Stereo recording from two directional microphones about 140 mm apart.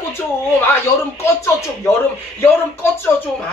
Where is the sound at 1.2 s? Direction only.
20° left (ahead or behind).